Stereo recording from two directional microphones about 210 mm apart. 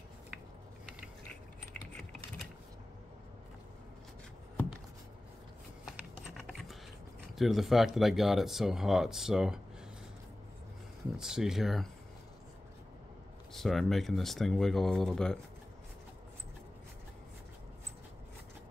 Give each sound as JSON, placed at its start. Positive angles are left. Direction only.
{"t": 6.3, "sound": "typing", "side_deg": 0}
{"t": 7.3, "sound": "speech", "side_deg": 0}
{"t": 11.1, "sound": "speech", "side_deg": -5}
{"t": 13.5, "sound": "speech", "side_deg": 0}